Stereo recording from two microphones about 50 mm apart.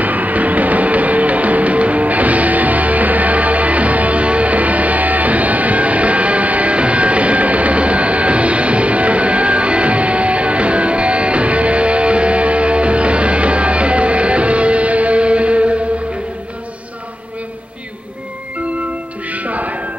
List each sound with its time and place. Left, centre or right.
0.0 s music: right
19.3 s music: right